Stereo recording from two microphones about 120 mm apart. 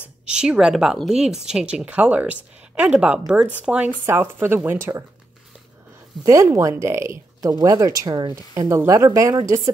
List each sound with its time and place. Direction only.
0.2 s a woman's voice: 10° right (ahead or behind)
6.2 s speech: 25° right (ahead or behind)
8.6 s speech: 25° right (ahead or behind)